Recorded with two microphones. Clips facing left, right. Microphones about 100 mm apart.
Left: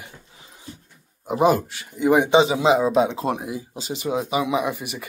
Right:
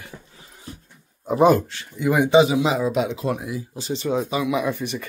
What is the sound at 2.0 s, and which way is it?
Speech, 20° left (ahead or behind).